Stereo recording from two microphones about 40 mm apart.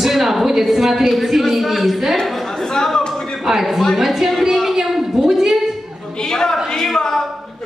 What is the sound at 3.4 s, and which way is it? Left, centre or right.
Speech, centre.